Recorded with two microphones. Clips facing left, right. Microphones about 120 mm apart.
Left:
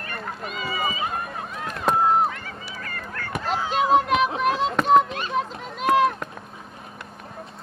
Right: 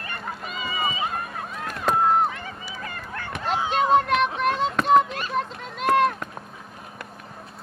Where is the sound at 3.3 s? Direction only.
Centre (ahead or behind).